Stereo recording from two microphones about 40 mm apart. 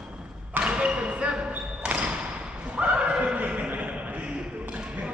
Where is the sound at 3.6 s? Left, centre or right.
Right.